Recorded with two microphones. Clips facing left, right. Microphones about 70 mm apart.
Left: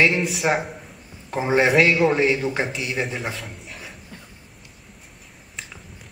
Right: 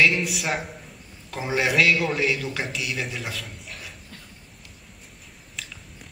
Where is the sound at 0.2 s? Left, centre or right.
Left.